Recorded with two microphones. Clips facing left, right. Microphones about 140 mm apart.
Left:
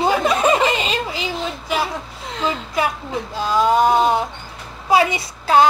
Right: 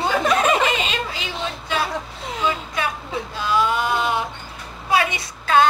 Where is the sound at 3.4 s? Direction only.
40° left (ahead or behind).